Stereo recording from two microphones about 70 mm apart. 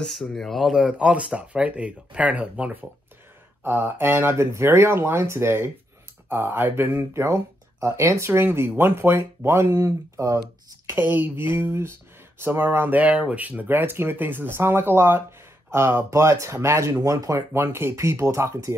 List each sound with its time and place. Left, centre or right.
0.1 s speech: centre
0.6 s speech: centre
3.6 s speech: right
10.9 s speech: right
17.5 s speech: right